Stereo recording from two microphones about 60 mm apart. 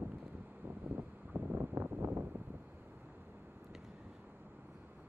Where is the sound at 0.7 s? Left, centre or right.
Right.